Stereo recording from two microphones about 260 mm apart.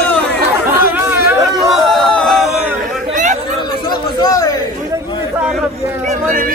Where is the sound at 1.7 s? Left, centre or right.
Centre.